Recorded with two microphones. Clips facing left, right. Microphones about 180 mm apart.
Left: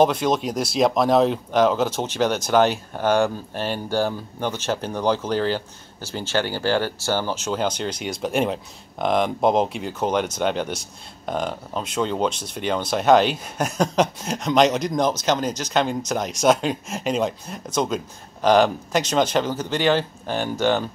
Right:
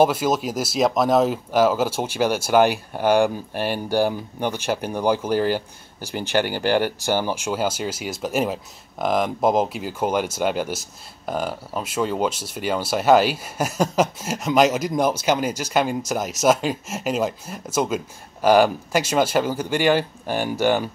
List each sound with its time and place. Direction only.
0.0 s speech: 5° right (ahead or behind)